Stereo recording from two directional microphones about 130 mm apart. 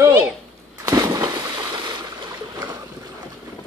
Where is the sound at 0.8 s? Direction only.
30° right (ahead or behind).